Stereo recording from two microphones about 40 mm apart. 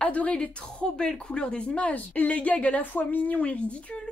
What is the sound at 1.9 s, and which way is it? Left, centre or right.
A woman's voice, left.